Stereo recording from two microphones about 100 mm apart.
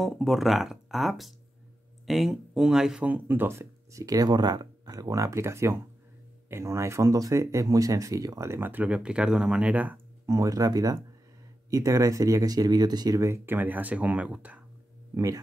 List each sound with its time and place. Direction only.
0.0 s speech: centre (ahead or behind)
3.1 s speech: 20° right (ahead or behind)
10.2 s speech: 35° right (ahead or behind); by 14.6 s 15° right (ahead or behind)
15.1 s speech: 35° right (ahead or behind)